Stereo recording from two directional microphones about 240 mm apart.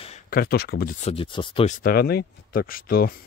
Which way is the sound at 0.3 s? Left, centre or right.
Left.